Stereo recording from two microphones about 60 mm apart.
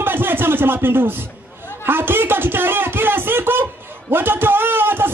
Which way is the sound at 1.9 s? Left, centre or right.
Right.